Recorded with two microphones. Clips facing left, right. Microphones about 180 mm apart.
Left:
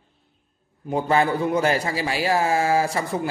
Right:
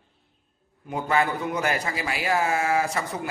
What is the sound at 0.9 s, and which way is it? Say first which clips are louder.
A man's voice: left 4 dB; 30° left (ahead or behind).